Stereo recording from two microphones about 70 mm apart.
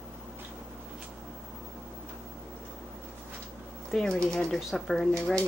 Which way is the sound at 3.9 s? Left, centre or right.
Centre.